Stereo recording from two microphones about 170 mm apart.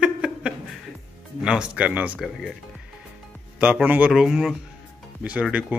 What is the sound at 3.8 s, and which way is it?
Speech, 10° right (ahead or behind).